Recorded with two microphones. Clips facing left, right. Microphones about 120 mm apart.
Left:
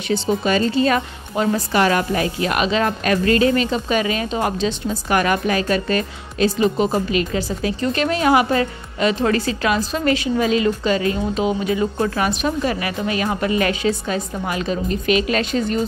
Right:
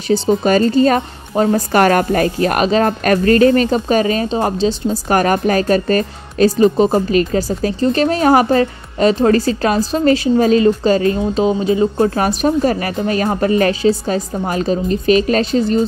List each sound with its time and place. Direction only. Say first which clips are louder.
0.1 s a woman's voice: right 6 dB; 40° right (ahead or behind)